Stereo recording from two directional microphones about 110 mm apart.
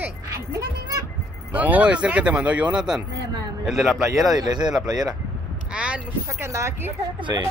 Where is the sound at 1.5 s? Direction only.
15° right (ahead or behind).